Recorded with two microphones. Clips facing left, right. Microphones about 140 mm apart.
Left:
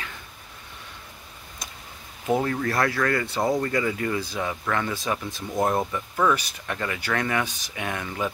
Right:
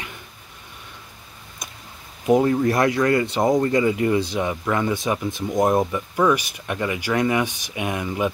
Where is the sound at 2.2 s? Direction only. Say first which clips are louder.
Right 7 dB; 20° right (ahead or behind).